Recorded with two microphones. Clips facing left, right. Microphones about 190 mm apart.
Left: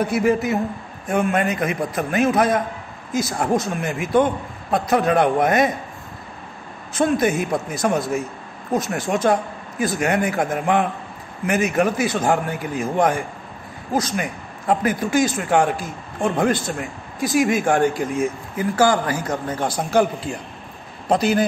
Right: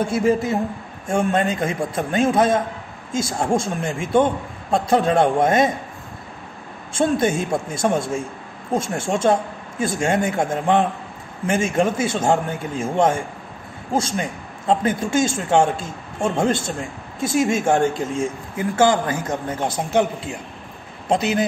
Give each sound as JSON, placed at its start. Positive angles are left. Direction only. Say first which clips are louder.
{"t": 0.0, "sound": "speech", "louder": "even", "side_deg": -25}
{"t": 6.9, "sound": "speech", "louder": "even", "side_deg": -25}